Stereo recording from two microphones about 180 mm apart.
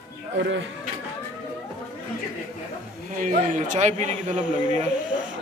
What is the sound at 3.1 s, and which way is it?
A man's voice, 45° right (ahead or behind).